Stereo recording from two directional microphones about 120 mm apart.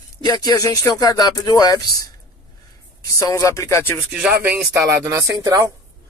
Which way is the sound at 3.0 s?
30° left (ahead or behind).